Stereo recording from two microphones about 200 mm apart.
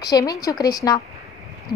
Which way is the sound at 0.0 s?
20° left (ahead or behind).